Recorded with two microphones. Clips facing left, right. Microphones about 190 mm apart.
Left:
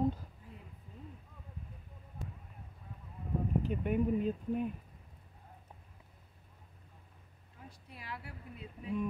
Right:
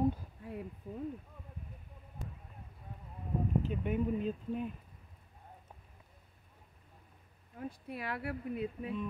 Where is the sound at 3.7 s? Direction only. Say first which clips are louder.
Left 2 dB; 5° left (ahead or behind).